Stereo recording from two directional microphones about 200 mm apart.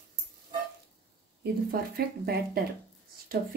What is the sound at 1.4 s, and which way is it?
Speech, 50° right (ahead or behind).